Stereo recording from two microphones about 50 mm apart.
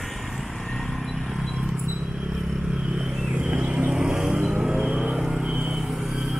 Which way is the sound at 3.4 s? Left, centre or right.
Right.